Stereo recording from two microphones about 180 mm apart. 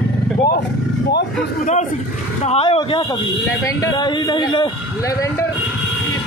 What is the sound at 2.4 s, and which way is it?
A man's voice, 35° left (ahead or behind).